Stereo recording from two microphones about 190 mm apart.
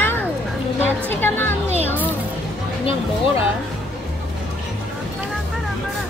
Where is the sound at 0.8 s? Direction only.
10° left (ahead or behind).